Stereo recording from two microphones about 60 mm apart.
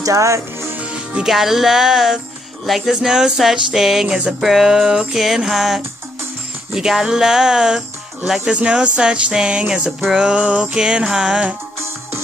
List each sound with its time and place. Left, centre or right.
0.0 s speech: right
0.7 s music: centre
1.3 s a sound: centre